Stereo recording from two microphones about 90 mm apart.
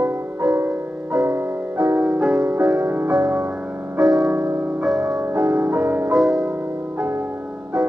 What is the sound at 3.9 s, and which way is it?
Music, 45° right (ahead or behind).